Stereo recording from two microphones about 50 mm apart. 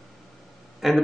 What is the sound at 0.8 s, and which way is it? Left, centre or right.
Speech, centre.